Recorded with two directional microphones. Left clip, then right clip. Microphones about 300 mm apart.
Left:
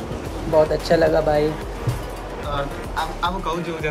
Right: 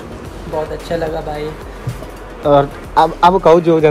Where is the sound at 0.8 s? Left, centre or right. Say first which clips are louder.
Left 3 dB; centre.